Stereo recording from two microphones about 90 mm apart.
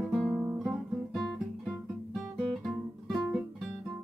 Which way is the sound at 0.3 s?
25° right (ahead or behind).